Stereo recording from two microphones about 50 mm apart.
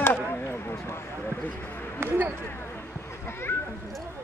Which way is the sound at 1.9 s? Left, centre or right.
Right.